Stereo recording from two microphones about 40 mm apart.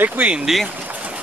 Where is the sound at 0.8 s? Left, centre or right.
Right.